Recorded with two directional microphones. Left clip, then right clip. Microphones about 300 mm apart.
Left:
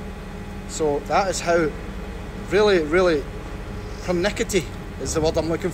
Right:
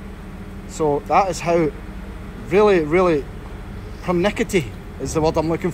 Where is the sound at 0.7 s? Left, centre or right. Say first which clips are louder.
Right 4 dB; right.